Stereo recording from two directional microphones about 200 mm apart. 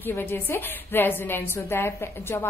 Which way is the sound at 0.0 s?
10° left (ahead or behind).